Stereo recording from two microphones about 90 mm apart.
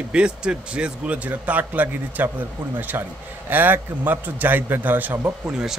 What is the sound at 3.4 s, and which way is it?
A man's voice, 20° right (ahead or behind).